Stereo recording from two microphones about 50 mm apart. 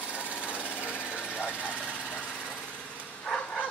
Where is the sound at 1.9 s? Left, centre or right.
Left.